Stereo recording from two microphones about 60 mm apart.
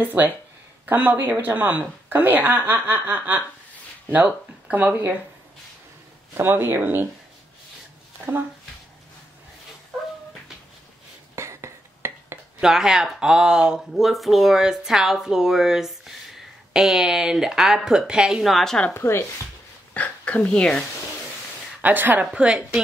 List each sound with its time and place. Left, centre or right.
0.0 s a woman's voice: right
6.3 s a woman's voice: right
9.9 s dog: centre
11.3 s a sound: right
12.5 s speech: centre
18.4 s a woman's voice: centre
18.9 s speech: left
19.9 s speech: left
21.8 s a woman's voice: right
22.3 s speech: centre